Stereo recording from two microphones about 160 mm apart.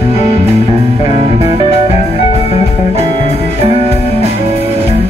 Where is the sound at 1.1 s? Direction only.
40° right (ahead or behind).